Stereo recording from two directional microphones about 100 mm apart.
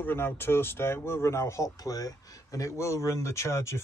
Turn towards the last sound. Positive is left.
turn(degrees=30)  # may be behind; listen again after turning